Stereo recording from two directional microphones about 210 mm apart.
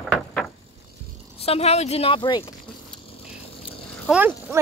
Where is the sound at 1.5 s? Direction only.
30° left (ahead or behind).